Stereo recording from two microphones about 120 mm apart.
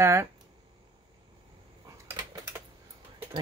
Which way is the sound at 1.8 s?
30° right (ahead or behind).